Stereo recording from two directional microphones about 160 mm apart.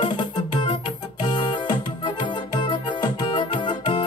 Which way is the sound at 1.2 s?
30° left (ahead or behind).